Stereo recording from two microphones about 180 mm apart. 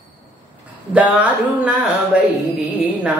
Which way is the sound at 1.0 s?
5° right (ahead or behind).